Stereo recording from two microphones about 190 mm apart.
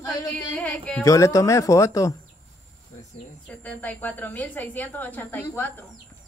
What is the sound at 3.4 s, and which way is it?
A woman's voice, 10° left (ahead or behind).